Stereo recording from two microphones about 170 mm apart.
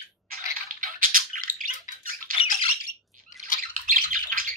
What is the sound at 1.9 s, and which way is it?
Squawk, 50° left (ahead or behind).